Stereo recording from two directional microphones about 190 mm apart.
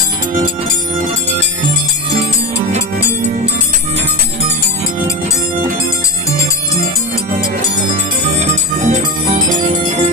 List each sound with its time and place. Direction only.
8.8 s jingle bell: 40° right (ahead or behind)